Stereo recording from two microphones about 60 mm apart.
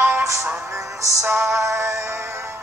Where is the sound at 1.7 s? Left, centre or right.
Right.